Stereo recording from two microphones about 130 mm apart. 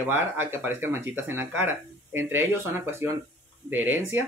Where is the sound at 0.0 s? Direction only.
15° right (ahead or behind).